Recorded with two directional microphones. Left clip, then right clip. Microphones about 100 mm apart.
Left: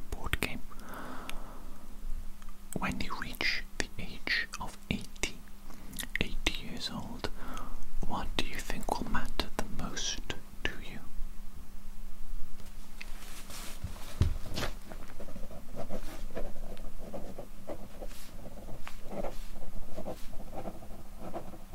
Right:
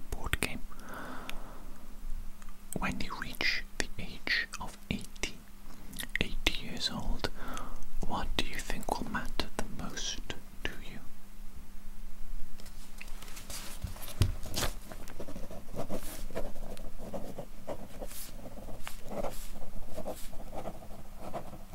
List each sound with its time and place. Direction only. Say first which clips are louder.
0.1 s whispering: even; 5° right (ahead or behind)
2.7 s whispering: left 1 dB; centre (ahead or behind)
14.2 s a sound: right 2 dB; 30° right (ahead or behind)
18.9 s dog: right 2 dB; 35° right (ahead or behind)
20.0 s a sound: right 1 dB; 30° right (ahead or behind)
21.2 s insect: right 1 dB; 30° right (ahead or behind)